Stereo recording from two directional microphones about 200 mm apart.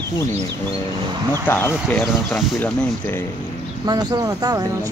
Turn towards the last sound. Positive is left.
turn(degrees=-20)  # may be behind; listen again after turning